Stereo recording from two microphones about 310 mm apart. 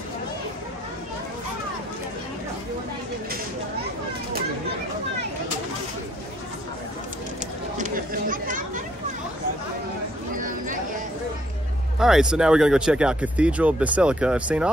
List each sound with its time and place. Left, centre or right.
7.7 s chatter: right
10.3 s a sound: right
12.0 s speech: centre